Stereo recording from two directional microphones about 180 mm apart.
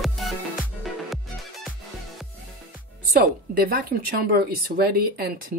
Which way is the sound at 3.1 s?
55° right (ahead or behind).